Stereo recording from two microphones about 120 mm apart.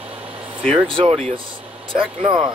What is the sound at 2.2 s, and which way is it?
Speech, 60° right (ahead or behind).